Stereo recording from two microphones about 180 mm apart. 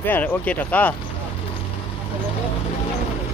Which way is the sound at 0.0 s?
10° left (ahead or behind).